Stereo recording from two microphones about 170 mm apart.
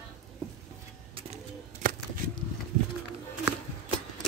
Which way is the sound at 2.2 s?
55° right (ahead or behind).